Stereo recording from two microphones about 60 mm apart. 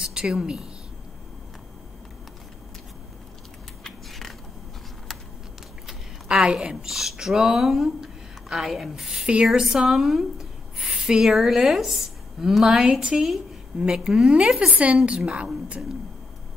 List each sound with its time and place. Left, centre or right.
0.0 s a woman's voice: centre
3.8 s a sound: centre
6.4 s a woman's voice: centre
6.9 s a woman's voice: centre